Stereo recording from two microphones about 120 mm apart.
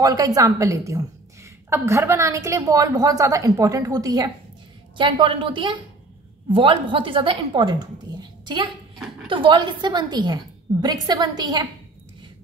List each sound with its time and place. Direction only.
0.0 s a woman's voice: 30° right (ahead or behind)
4.9 s a woman's voice: 45° right (ahead or behind)